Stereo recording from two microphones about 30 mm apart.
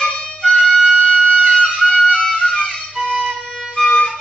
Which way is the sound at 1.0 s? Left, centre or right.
Left.